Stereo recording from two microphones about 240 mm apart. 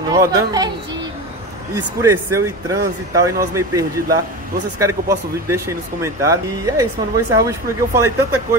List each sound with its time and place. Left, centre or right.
0.1 s speech: centre
2.0 s speech: centre